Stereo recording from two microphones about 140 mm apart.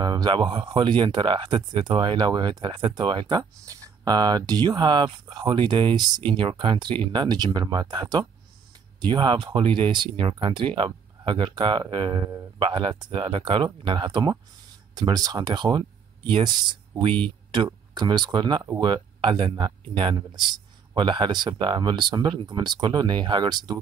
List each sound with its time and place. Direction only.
0.0 s speech: 30° right (ahead or behind)